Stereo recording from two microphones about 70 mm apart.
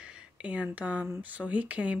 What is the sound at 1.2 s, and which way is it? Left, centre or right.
Speech, right.